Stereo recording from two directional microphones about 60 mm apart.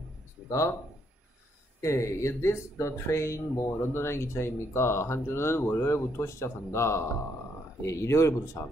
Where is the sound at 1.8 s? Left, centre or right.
Left.